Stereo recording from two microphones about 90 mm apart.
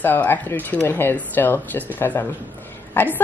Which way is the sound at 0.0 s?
20° left (ahead or behind).